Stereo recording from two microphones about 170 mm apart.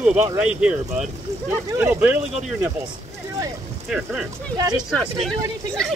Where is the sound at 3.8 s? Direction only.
5° right (ahead or behind).